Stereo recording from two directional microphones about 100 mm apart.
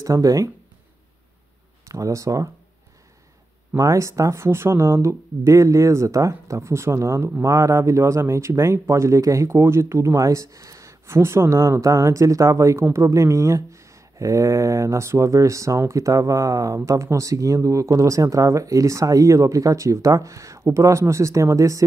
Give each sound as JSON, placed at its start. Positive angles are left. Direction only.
{"t": 0.0, "sound": "speech", "side_deg": -35}
{"t": 1.9, "sound": "speech", "side_deg": -35}
{"t": 3.7, "sound": "speech", "side_deg": -30}